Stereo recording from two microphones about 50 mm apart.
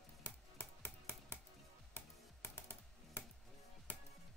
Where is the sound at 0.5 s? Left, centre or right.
Left.